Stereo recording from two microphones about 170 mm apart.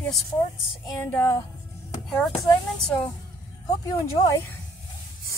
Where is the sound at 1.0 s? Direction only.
15° left (ahead or behind).